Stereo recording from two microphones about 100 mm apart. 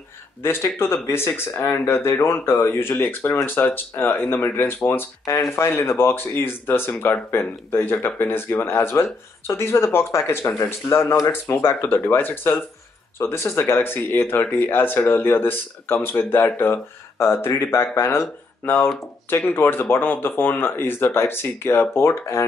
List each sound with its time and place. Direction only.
0.4 s speech: 25° left (ahead or behind)